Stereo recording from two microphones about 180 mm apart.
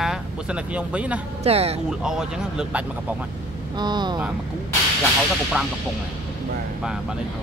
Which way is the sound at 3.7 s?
25° right (ahead or behind).